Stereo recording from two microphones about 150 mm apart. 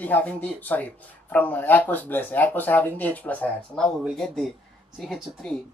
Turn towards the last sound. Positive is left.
turn(degrees=0)  # may be behind; listen again after turning